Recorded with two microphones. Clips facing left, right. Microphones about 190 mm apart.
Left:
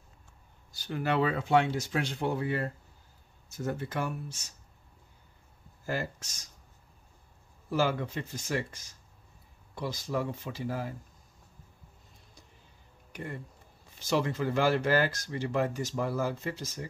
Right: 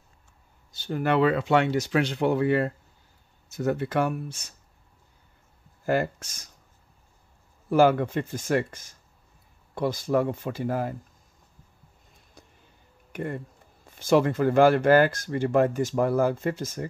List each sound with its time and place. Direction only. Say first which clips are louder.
0.7 s a sound: right 6 dB; 25° right (ahead or behind)
0.9 s speech: right 6 dB; 60° right (ahead or behind)
5.9 s speech: right 9 dB; 55° right (ahead or behind)
7.7 s speech: right 9 dB; 55° right (ahead or behind)
13.1 s speech: right 8 dB; 55° right (ahead or behind)